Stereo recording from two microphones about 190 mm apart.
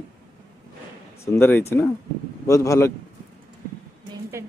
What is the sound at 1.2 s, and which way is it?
Speech, 15° left (ahead or behind).